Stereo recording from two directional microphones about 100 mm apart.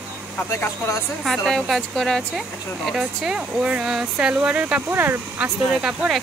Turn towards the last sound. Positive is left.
turn(degrees=-10)  # may be behind; listen again after turning